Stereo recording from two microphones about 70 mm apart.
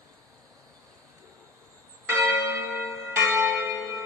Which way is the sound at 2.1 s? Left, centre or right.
Right.